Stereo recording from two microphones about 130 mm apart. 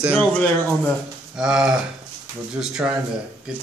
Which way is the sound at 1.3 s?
5° right (ahead or behind).